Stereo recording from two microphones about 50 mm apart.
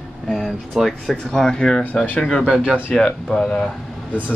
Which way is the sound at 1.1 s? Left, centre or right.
Centre.